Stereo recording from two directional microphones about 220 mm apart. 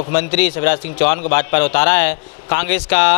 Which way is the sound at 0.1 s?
10° left (ahead or behind).